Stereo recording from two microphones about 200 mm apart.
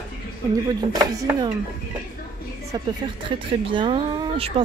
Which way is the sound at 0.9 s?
20° right (ahead or behind).